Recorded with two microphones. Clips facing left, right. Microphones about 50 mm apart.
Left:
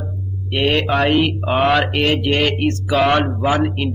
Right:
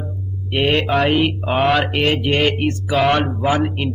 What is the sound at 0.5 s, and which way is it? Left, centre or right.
Speech, centre.